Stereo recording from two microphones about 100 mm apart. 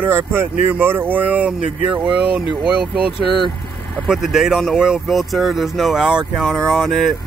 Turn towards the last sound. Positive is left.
turn(degrees=0)  # may be behind; listen again after turning